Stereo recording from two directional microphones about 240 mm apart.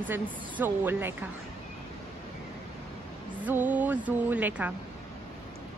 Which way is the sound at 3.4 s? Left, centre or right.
Centre.